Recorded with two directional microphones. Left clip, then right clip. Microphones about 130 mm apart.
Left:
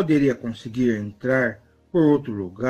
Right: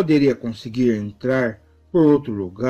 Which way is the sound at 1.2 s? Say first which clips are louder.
Right 1 dB; 30° right (ahead or behind).